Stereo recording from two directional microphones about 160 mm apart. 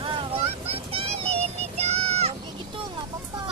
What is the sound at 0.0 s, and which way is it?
Vehicle, 35° right (ahead or behind).